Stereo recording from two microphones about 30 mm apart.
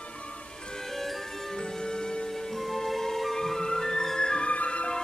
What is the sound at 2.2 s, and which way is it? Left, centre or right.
Music, centre.